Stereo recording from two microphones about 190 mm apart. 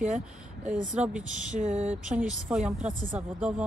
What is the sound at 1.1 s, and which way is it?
Speech, 40° right (ahead or behind).